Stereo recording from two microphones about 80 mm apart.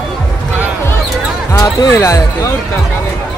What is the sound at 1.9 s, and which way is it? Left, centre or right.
Speech, left.